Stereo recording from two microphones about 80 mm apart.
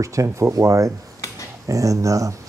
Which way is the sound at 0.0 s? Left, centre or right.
Right.